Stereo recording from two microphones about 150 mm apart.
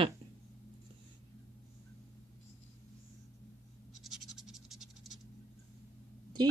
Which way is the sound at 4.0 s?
Centre (ahead or behind).